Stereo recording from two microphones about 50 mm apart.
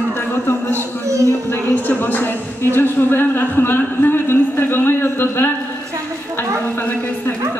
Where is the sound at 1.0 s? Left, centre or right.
Right.